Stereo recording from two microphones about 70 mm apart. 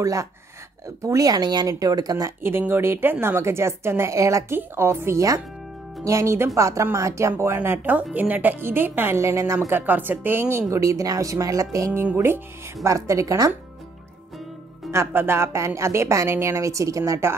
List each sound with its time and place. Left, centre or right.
0.0 s a woman's voice: right
1.7 s speech: right
2.6 s a woman's voice: right
7.6 s a woman's voice: right
9.2 s a woman's voice: right
9.7 s a woman's voice: right
10.7 s a woman's voice: right
14.9 s a woman's voice: right